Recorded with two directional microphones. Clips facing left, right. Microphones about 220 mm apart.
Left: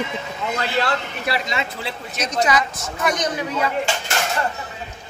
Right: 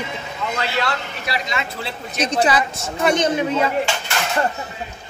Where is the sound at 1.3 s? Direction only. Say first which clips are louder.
Left 2 dB; 55° left (ahead or behind).